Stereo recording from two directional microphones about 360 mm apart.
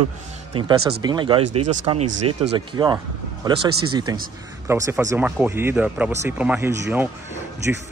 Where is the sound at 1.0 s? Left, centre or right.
Centre.